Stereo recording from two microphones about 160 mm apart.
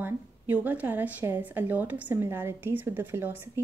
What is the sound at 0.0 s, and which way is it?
A woman's voice, 10° right (ahead or behind).